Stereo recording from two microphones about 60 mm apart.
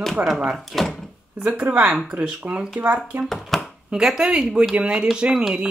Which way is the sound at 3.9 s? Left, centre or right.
Centre.